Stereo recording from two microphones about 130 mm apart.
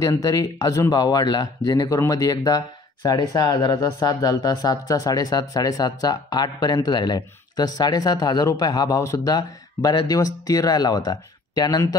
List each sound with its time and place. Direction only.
0.0 s speech: 25° left (ahead or behind)